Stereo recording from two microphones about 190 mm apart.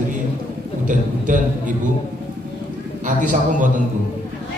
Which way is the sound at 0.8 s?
40° right (ahead or behind).